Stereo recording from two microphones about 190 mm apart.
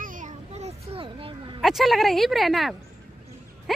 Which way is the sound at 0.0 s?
45° right (ahead or behind).